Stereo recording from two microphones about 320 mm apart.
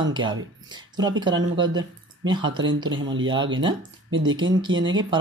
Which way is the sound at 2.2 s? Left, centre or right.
Centre.